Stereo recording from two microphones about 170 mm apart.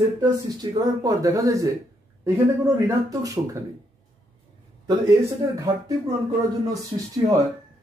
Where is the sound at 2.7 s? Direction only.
20° right (ahead or behind).